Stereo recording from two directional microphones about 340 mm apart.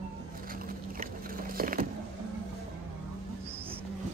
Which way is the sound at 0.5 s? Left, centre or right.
Right.